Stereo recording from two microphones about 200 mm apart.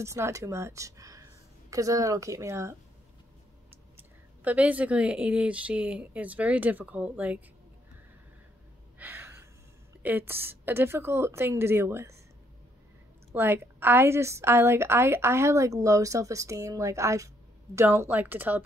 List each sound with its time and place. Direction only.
0.0 s a woman's voice: 15° right (ahead or behind)
3.9 s a woman's voice: 10° right (ahead or behind)
8.9 s gasp: 10° right (ahead or behind)
10.0 s a woman's voice: 10° right (ahead or behind)
13.3 s a woman's voice: 10° right (ahead or behind)